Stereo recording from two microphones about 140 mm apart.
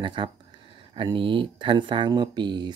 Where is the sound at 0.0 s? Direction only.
35° right (ahead or behind).